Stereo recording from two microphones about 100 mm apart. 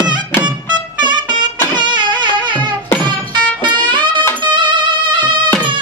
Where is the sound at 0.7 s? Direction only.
50° right (ahead or behind).